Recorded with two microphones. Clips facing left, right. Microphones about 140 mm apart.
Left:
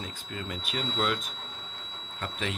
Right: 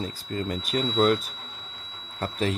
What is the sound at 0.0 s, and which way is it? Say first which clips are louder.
Speech: right 8 dB; 35° right (ahead or behind).